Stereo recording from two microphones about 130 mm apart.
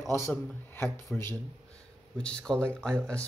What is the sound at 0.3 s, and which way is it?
Speech, 20° left (ahead or behind).